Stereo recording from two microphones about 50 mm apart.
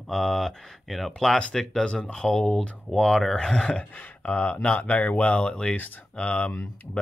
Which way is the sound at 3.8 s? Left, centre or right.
Left.